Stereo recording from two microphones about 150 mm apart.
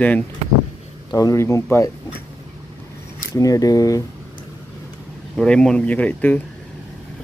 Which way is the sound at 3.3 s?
25° left (ahead or behind).